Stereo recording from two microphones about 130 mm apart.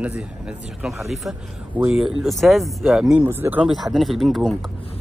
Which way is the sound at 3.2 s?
20° right (ahead or behind).